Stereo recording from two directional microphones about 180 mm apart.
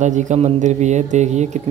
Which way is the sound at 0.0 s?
45° right (ahead or behind).